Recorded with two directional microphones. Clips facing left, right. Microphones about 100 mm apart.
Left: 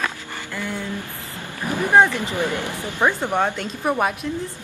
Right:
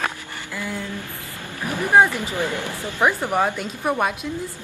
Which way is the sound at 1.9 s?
15° right (ahead or behind).